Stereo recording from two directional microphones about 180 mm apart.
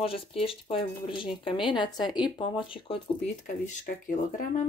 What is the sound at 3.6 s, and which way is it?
Speech, 50° left (ahead or behind).